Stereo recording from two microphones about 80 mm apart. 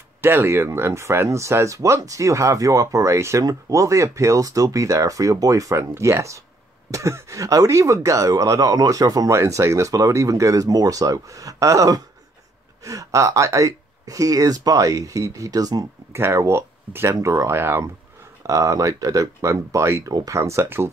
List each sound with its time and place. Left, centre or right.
0.2 s speech: right
16.1 s speech: right
18.5 s speech: right
20.1 s speech: right
20.3 s speech: right